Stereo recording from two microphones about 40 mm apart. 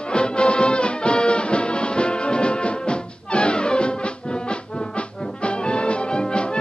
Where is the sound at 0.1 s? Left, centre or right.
Left.